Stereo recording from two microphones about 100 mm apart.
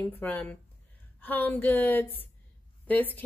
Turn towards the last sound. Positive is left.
turn(degrees=15)  # may be behind; listen again after turning